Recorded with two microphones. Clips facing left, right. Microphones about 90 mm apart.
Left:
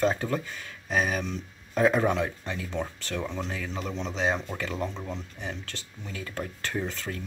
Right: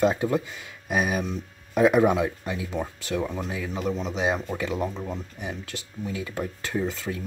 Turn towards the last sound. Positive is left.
turn(degrees=-10)  # may be behind; listen again after turning